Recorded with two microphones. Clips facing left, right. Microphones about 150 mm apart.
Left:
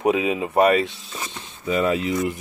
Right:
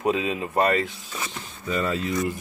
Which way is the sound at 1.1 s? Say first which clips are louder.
Right 1 dB; 25° left (ahead or behind).